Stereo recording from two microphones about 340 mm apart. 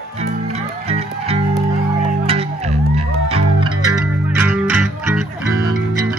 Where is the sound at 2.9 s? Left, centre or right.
Centre.